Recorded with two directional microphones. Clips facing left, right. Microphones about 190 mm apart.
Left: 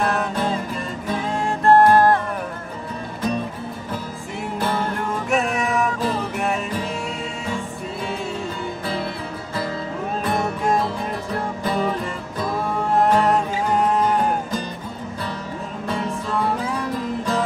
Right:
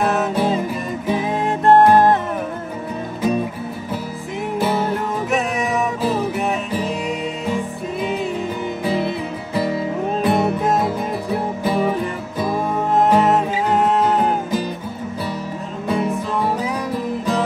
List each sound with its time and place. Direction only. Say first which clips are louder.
0.0 s music: right 4 dB; 5° right (ahead or behind)
3.2 s music: right 4 dB; 10° right (ahead or behind)
4.6 s music: right 4 dB; 10° right (ahead or behind)
7.4 s music: right 5 dB; 15° right (ahead or behind)
10.2 s music: right 4 dB; 5° right (ahead or behind); by 13.3 s 20° right (ahead or behind)
15.9 s music: right 5 dB; 15° right (ahead or behind)